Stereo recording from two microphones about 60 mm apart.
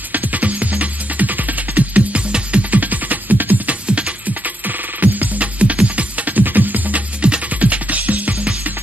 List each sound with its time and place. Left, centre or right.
0.1 s music: right